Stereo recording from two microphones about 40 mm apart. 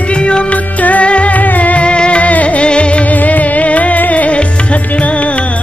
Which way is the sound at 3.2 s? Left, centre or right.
Left.